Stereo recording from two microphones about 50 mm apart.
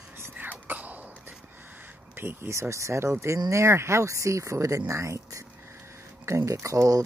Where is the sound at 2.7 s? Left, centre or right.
Right.